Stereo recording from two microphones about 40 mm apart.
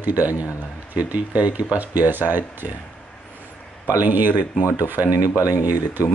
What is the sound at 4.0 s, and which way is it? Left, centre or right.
Speech, right.